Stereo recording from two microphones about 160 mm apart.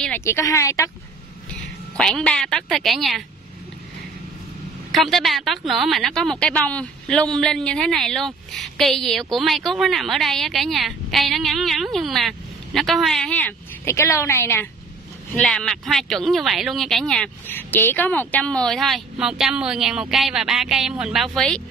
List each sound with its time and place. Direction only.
0.2 s speech: 15° left (ahead or behind)
2.0 s speech: 5° left (ahead or behind)
4.9 s speech: centre (ahead or behind)